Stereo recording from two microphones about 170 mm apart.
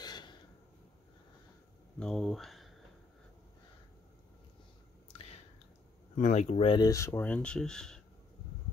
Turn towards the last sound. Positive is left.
turn(degrees=5)  # may be behind; listen again after turning